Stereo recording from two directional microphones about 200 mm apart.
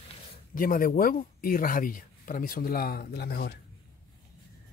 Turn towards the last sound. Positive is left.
turn(degrees=50)  # may be behind; listen again after turning